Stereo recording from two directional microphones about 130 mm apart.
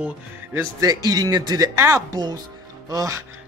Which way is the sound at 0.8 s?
30° right (ahead or behind).